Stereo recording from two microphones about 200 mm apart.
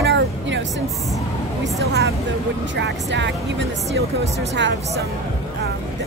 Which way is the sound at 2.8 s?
60° right (ahead or behind).